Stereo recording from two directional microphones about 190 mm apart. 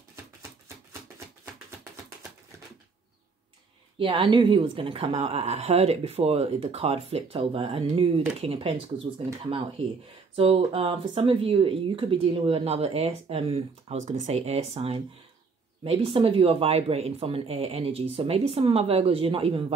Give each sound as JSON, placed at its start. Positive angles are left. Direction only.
{"t": 4.0, "sound": "speech", "side_deg": -25}